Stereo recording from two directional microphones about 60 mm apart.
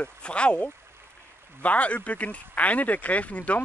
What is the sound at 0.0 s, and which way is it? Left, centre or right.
Speech, centre.